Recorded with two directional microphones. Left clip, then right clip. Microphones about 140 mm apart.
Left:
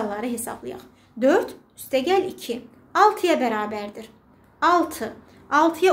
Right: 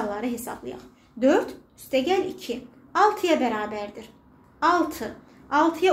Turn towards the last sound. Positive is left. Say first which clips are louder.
# left 2 dB
turn(degrees=30)  # may be behind; listen again after turning